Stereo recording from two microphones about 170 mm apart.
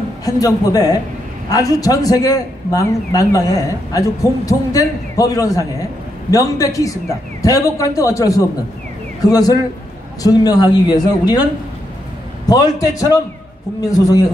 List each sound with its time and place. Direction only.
0.2 s a man's voice: 20° left (ahead or behind)
12.4 s a man's voice: 20° left (ahead or behind)